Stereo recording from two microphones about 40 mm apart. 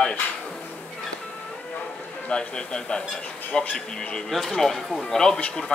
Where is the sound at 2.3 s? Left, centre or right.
Left.